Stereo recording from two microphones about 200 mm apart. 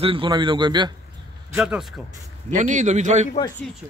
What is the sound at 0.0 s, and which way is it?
Speech, 25° right (ahead or behind).